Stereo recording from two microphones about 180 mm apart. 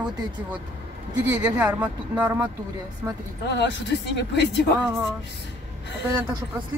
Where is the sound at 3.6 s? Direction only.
75° left (ahead or behind).